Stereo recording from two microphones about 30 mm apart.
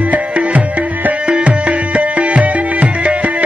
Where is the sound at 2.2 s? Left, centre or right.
Right.